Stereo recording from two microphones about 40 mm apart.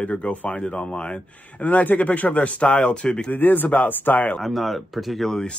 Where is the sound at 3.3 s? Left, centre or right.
Left.